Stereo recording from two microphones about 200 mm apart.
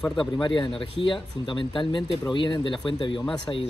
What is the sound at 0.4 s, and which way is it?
Speech, 25° left (ahead or behind).